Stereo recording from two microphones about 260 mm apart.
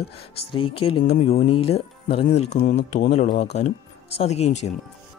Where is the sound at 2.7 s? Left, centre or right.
Left.